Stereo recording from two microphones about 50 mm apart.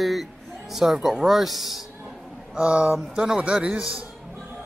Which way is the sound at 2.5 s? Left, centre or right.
Centre.